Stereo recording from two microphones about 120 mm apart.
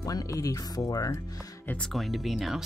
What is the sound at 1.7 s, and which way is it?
Speech, 5° left (ahead or behind).